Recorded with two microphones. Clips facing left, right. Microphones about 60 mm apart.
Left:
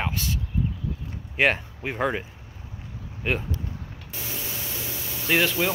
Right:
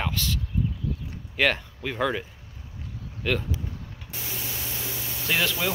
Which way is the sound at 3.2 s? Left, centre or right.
Left.